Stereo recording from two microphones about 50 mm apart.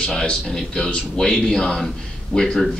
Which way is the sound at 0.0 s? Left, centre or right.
Centre.